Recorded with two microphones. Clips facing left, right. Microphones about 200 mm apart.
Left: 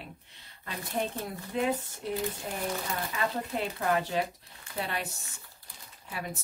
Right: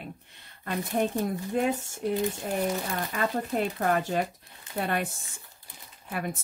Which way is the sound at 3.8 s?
50° right (ahead or behind).